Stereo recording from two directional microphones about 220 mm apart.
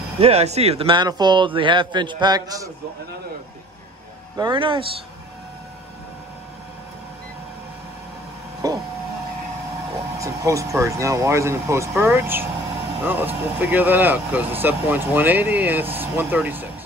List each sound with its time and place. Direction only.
0.2 s a man's voice: 30° right (ahead or behind)
4.4 s a man's voice: 20° right (ahead or behind)
8.6 s printer: 15° right (ahead or behind)
10.1 s speech: 15° right (ahead or behind)